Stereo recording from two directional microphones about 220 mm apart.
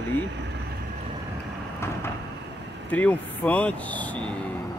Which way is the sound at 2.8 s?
5° left (ahead or behind).